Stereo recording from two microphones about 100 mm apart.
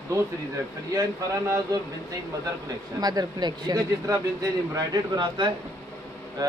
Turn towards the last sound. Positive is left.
turn(degrees=-40)  # may be behind; listen again after turning